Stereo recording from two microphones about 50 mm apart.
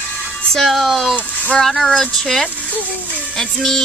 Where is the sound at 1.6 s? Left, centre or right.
Centre.